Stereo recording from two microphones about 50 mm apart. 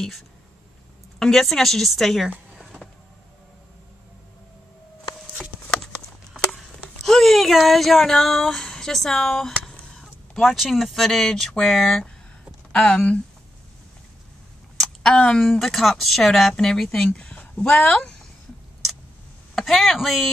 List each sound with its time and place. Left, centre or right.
1.2 s speech: centre
7.0 s speech: centre
12.7 s speech: left
15.0 s speech: centre
15.4 s speech: centre
17.2 s a sound: left
19.5 s speech: centre